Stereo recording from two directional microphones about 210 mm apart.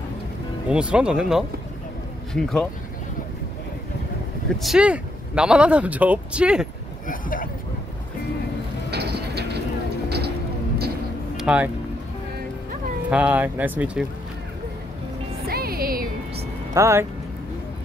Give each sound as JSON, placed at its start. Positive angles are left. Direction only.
{"t": 0.7, "sound": "speech", "side_deg": -5}
{"t": 4.6, "sound": "speech", "side_deg": 0}
{"t": 7.1, "sound": "speech", "side_deg": 40}
{"t": 8.9, "sound": "vehicle", "side_deg": -50}
{"t": 11.3, "sound": "a sound", "side_deg": -5}
{"t": 13.1, "sound": "speech", "side_deg": -5}
{"t": 15.4, "sound": "music", "side_deg": -45}
{"t": 16.7, "sound": "speech", "side_deg": -15}